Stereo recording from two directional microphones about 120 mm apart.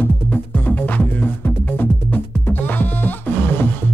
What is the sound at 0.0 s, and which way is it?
Music, 15° left (ahead or behind).